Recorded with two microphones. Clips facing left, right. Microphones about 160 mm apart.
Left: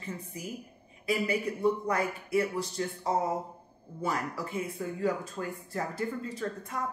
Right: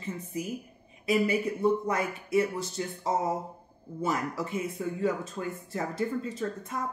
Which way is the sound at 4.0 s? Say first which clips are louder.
Right 2 dB; 25° right (ahead or behind).